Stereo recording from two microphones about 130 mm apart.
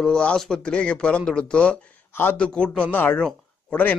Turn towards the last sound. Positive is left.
turn(degrees=5)  # may be behind; listen again after turning